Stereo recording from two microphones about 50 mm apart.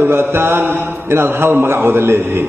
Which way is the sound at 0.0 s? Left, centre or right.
Right.